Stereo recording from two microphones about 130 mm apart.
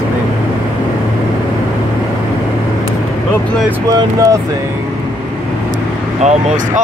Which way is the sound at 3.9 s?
25° right (ahead or behind).